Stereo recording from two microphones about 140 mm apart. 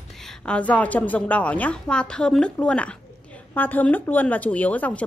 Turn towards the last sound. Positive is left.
turn(degrees=10)  # may be behind; listen again after turning